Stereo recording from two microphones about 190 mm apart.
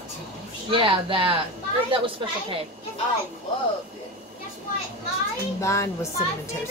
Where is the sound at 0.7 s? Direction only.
25° right (ahead or behind).